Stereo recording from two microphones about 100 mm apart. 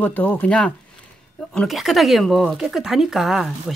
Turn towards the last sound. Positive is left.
turn(degrees=-5)  # may be behind; listen again after turning